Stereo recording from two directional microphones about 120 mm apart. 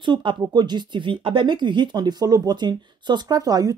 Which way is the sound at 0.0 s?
45° right (ahead or behind).